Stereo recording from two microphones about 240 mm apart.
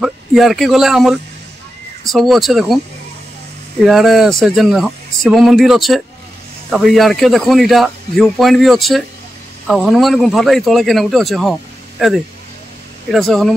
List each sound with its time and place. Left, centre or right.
0.0 s a man's voice: centre
3.8 s a man's voice: centre
13.1 s a man's voice: centre